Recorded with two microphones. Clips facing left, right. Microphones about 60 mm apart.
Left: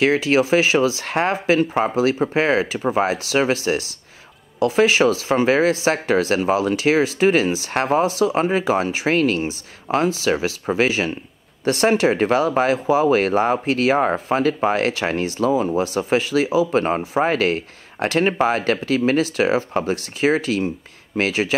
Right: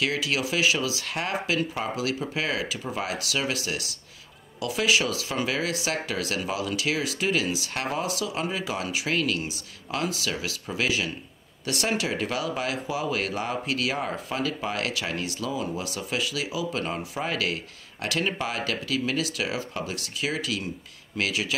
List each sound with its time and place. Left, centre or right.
0.0 s speech: left